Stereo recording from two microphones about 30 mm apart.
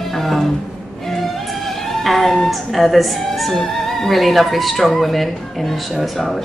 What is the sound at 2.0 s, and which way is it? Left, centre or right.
Music, centre.